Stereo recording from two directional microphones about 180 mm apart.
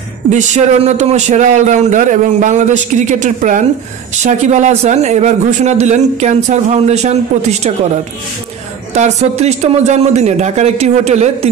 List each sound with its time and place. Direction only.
0.3 s speech: 40° right (ahead or behind)
8.9 s speech: 40° right (ahead or behind)